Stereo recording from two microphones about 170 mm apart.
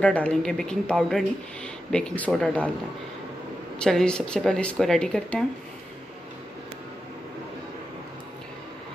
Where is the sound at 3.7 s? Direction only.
5° left (ahead or behind).